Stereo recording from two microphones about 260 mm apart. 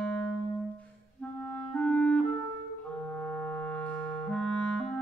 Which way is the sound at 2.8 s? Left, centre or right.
Centre.